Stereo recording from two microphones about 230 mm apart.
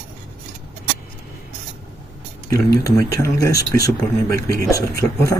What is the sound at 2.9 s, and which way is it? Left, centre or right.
Speech, centre.